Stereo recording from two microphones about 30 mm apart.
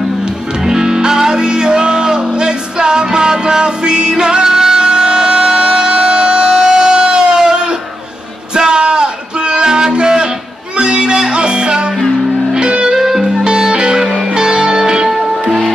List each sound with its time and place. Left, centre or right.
0.7 s music: right
12.9 s music: centre
13.4 s music: right